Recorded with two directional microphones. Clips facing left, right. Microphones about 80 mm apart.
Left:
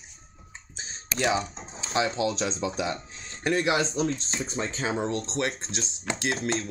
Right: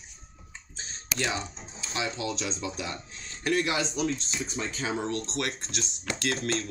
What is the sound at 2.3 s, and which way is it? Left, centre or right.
Speech, left.